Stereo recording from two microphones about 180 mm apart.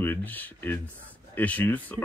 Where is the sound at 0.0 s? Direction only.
10° left (ahead or behind).